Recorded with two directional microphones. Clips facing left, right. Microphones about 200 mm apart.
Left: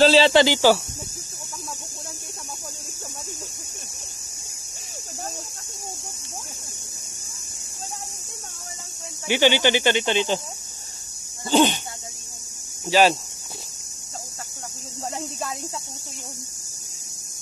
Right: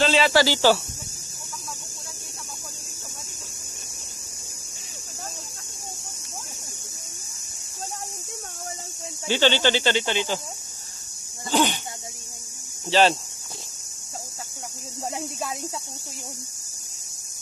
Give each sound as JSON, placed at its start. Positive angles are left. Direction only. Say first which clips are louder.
{"t": 0.0, "sound": "speech", "louder": "left 5 dB", "side_deg": 35}
{"t": 0.3, "sound": "speech", "louder": "left 2 dB", "side_deg": 20}
{"t": 9.3, "sound": "speech", "louder": "left 2 dB", "side_deg": 15}
{"t": 11.5, "sound": "a sound", "louder": "left 4 dB", "side_deg": 20}
{"t": 12.9, "sound": "speech", "louder": "left 1 dB", "side_deg": 10}